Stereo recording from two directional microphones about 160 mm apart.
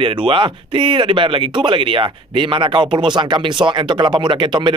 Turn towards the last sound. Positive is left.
turn(degrees=-30)  # may be behind; listen again after turning